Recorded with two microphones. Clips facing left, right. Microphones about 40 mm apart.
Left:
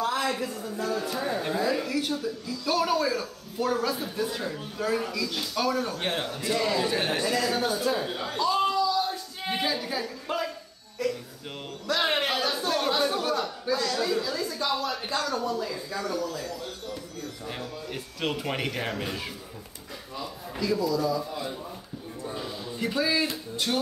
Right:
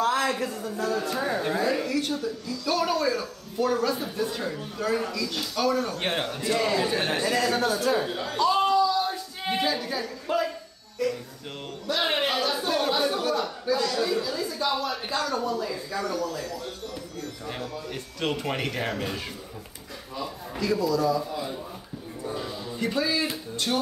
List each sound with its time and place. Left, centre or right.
0.1 s music: centre
0.7 s speech: centre
5.9 s a man's voice: centre
6.3 s a man's voice: centre
7.6 s speech: centre
8.4 s a sound: centre
11.9 s a sound: centre
17.5 s a man's voice: centre